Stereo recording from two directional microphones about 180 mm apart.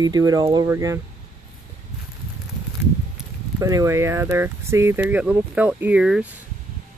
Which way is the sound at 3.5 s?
20° right (ahead or behind).